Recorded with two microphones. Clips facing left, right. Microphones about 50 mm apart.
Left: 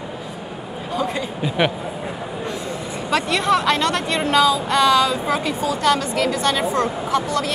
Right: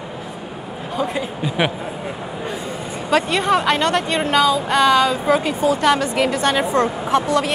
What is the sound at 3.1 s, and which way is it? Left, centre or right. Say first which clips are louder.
Speech: right 2 dB; centre.